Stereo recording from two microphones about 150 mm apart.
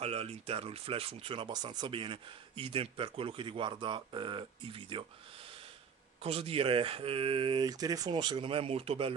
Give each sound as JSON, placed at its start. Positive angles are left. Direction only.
{"t": 0.0, "sound": "speech", "side_deg": -40}